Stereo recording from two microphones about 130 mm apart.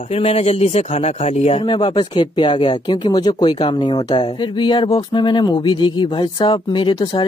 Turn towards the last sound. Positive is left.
turn(degrees=35)  # may be behind; listen again after turning